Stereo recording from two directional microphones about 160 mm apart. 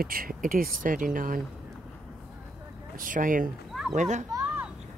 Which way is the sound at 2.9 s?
55° right (ahead or behind).